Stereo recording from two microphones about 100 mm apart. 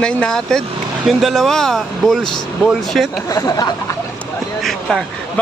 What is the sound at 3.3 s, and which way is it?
Speech, 40° left (ahead or behind).